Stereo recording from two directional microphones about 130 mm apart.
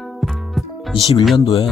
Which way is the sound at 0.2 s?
Centre (ahead or behind).